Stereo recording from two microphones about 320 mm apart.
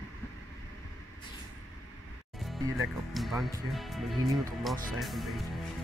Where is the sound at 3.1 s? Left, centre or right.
Centre.